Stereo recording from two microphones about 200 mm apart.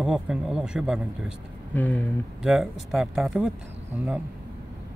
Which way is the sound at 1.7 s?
10° left (ahead or behind).